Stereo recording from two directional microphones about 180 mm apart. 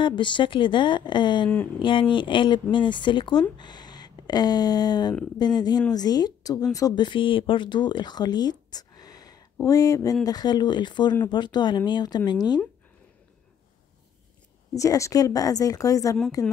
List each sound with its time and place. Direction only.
0.0 s speech: 25° left (ahead or behind)
14.7 s speech: 20° left (ahead or behind)